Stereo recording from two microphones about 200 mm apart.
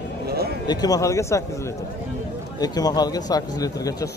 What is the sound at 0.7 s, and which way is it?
Speech, 20° left (ahead or behind).